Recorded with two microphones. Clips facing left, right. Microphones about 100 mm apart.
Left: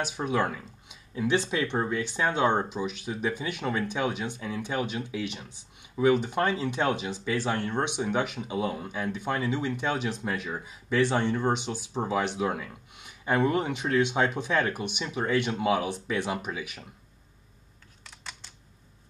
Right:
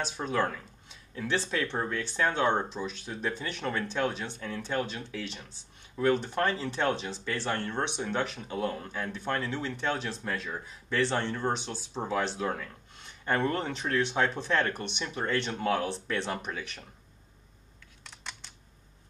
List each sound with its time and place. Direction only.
0.0 s speech: 10° left (ahead or behind)
18.0 s computer keyboard: centre (ahead or behind)